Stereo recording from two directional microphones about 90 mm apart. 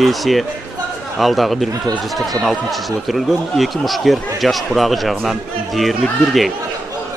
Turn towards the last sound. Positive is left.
turn(degrees=0)  # may be behind; listen again after turning